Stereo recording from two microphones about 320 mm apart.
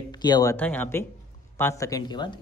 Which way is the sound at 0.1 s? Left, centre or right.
Centre.